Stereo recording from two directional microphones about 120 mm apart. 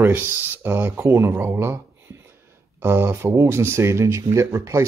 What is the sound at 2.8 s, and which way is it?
Speech, 20° right (ahead or behind).